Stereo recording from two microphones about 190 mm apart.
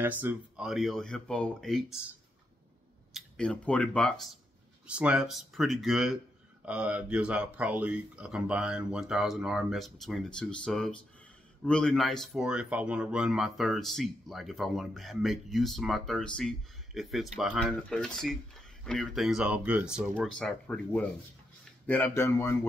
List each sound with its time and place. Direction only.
0.0 s speech: 10° right (ahead or behind)
3.1 s speech: centre (ahead or behind)
4.8 s speech: 5° right (ahead or behind); by 22.7 s 15° left (ahead or behind)